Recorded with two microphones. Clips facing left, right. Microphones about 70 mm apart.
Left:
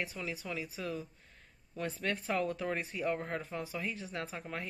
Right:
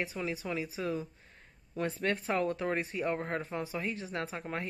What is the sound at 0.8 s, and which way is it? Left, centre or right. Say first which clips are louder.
Speech: right 5 dB; right.